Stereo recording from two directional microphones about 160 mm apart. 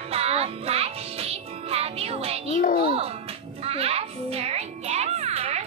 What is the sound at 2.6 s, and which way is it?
Music, 70° left (ahead or behind).